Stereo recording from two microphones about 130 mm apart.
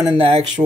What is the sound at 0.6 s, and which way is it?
Speech, 35° right (ahead or behind).